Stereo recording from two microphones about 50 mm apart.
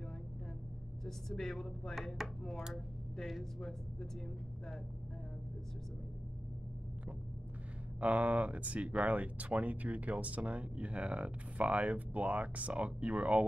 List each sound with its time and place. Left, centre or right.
1.0 s speech: centre
2.2 s speech: centre
8.0 s speech: right